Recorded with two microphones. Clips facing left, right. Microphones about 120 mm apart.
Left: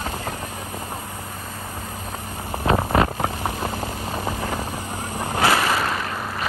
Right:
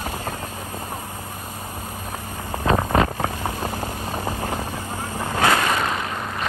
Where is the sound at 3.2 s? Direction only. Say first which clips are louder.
Even; 25° left (ahead or behind).